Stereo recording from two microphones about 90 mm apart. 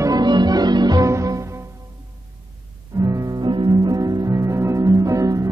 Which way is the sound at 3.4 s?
50° right (ahead or behind).